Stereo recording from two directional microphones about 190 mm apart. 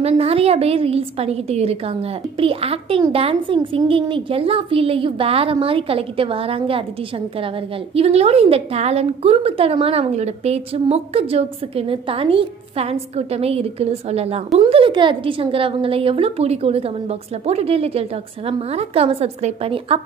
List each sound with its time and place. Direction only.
0.0 s a woman's voice: 30° right (ahead or behind)
7.9 s a woman's voice: 30° right (ahead or behind)